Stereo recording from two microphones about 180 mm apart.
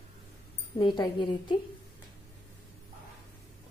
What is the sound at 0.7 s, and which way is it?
Speech, 25° left (ahead or behind).